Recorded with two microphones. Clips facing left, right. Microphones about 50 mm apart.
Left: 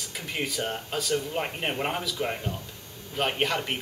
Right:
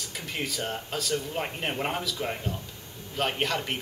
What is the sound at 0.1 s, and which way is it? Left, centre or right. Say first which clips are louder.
Speech: left 2 dB; centre.